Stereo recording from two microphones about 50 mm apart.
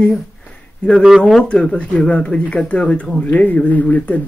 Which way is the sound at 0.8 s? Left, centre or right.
Left.